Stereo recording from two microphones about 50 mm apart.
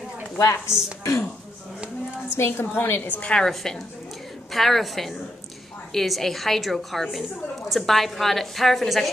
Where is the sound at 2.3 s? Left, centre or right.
Left.